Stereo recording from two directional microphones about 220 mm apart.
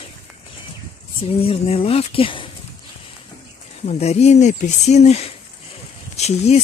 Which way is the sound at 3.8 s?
30° left (ahead or behind).